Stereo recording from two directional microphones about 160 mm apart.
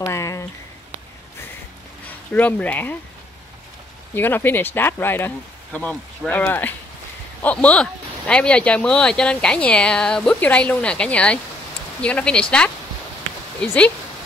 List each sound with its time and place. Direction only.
0.0 s a sound: 20° left (ahead or behind)
2.3 s speech: 10° left (ahead or behind)
4.1 s speech: 10° left (ahead or behind)